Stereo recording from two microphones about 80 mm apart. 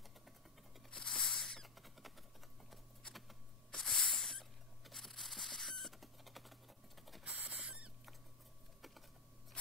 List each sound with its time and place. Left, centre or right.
0.9 s rodents: centre
2.7 s a sound: centre
7.2 s rodents: centre